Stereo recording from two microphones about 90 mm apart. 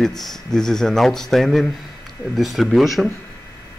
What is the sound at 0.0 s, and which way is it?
Speech, 5° left (ahead or behind).